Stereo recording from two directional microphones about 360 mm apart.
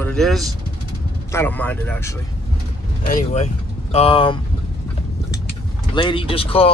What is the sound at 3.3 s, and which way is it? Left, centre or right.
Speech, centre.